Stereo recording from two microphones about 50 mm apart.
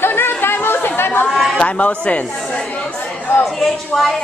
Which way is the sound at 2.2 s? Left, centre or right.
Centre.